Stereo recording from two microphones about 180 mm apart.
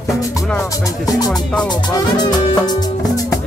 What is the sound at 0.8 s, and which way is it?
Music, 20° left (ahead or behind).